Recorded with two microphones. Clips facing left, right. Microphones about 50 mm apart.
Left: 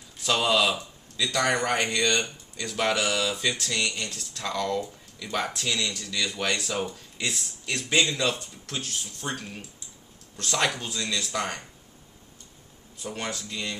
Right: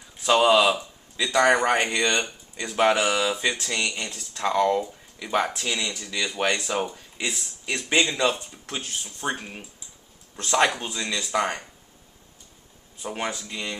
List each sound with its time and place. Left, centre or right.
0.2 s speech: centre
13.0 s speech: centre